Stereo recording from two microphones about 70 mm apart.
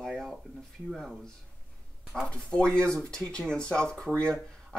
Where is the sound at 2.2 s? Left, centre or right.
Centre.